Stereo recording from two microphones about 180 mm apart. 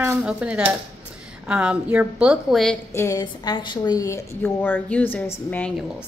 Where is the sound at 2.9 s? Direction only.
15° left (ahead or behind).